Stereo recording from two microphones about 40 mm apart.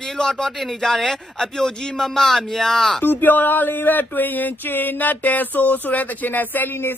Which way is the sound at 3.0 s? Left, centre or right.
Left.